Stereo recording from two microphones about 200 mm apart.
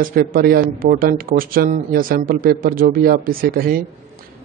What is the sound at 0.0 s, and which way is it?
Speech, 45° right (ahead or behind).